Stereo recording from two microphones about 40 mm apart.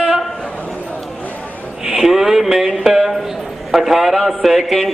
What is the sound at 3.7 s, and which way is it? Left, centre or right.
A man's voice, centre.